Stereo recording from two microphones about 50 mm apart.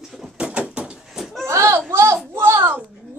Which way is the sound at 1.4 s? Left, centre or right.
Right.